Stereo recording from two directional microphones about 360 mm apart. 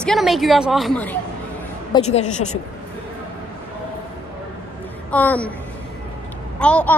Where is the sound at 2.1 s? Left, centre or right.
Centre.